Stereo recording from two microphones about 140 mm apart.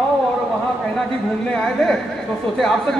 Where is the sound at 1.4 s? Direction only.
5° left (ahead or behind).